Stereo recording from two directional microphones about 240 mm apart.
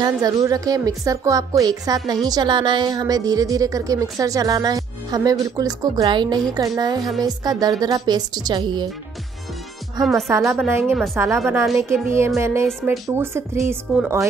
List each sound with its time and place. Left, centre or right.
0.0 s a woman's voice: centre
10.0 s speech: centre
10.3 s a woman's voice: centre
12.6 s a woman's voice: centre